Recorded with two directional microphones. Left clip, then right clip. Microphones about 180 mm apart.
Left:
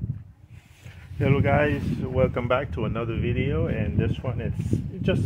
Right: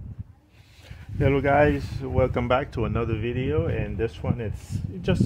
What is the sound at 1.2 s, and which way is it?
Speech, 55° right (ahead or behind).